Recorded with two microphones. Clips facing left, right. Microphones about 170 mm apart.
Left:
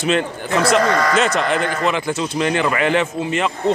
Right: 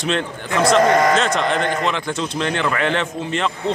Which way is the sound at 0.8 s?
20° right (ahead or behind).